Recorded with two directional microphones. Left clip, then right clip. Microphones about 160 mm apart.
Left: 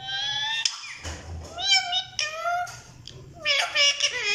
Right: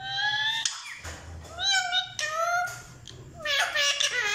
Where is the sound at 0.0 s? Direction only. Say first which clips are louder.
Right 1 dB; 15° left (ahead or behind).